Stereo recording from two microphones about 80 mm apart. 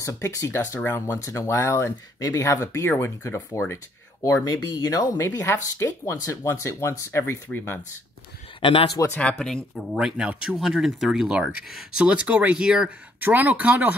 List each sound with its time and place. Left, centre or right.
0.0 s speech: left
2.1 s speech: left
2.4 s speech: left
8.5 s a man's voice: left
9.4 s speech: centre
9.8 s speech: centre
13.2 s speech: right